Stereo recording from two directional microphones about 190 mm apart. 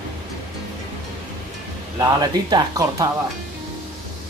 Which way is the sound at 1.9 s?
20° right (ahead or behind).